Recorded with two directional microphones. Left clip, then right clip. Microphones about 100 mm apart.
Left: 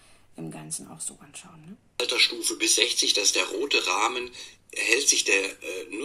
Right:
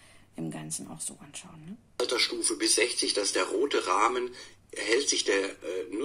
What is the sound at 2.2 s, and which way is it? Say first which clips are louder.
A man's voice: left 4 dB; 15° left (ahead or behind).